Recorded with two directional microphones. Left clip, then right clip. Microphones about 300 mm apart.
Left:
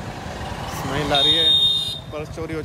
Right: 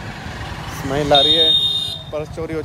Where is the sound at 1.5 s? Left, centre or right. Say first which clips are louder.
Right 1 dB; left.